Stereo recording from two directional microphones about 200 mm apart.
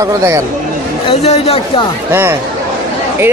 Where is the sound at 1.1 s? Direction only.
30° left (ahead or behind).